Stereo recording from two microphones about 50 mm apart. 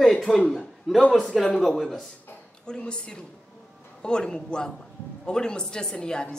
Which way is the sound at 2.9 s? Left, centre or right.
Centre.